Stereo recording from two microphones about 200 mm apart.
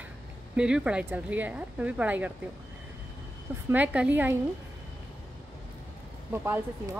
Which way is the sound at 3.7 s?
5° right (ahead or behind).